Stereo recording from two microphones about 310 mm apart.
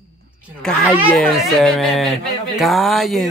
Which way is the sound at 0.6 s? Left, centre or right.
Centre.